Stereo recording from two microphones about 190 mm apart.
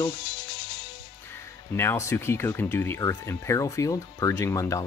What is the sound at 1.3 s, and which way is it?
Speech, 15° left (ahead or behind).